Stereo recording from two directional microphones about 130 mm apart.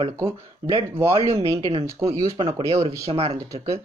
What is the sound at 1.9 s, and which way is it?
Speech, 20° right (ahead or behind).